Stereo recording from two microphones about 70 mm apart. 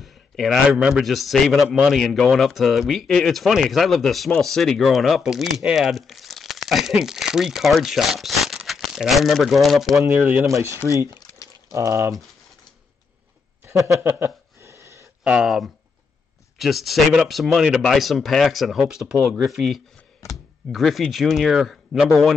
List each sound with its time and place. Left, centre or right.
0.0 s a sound: centre
0.7 s speech: centre
10.1 s speech: right
11.7 s speech: right
14.0 s a sound: right
15.4 s speech: centre